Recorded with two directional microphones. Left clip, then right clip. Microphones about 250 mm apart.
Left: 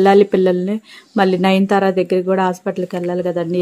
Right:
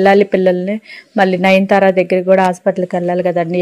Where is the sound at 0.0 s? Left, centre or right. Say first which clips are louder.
Right 2 dB; centre.